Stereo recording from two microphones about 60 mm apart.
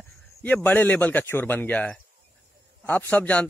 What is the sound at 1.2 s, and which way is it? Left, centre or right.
A man's voice, left.